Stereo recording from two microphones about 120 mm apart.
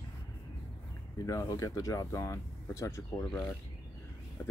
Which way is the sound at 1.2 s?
30° left (ahead or behind).